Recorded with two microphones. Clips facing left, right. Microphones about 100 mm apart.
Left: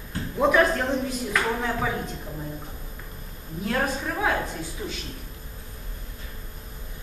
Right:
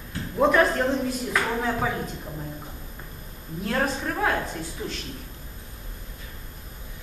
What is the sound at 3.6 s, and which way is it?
Speech, centre (ahead or behind).